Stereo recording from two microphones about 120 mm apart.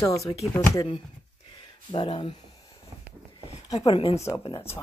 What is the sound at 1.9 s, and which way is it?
Speech, 45° left (ahead or behind).